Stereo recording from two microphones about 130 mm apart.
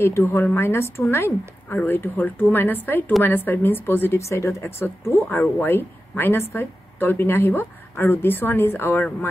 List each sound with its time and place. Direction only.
0.0 s a woman's voice: 20° left (ahead or behind)